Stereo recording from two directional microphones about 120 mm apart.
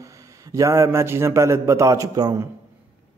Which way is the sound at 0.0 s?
25° right (ahead or behind).